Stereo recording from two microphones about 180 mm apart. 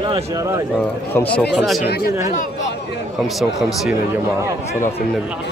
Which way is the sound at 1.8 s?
55° left (ahead or behind).